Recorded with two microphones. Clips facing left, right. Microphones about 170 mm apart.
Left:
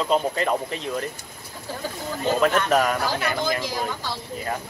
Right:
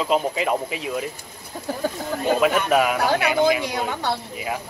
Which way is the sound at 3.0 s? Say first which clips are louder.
Right 6 dB; 65° right (ahead or behind).